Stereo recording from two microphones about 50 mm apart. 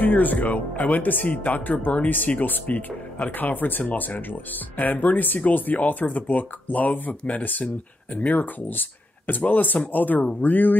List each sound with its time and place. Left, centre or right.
0.0 s speech: left